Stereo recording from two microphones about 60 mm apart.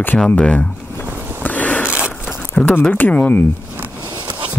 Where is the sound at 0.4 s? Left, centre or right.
Left.